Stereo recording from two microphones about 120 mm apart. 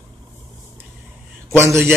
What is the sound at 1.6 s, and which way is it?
Speech, 20° right (ahead or behind).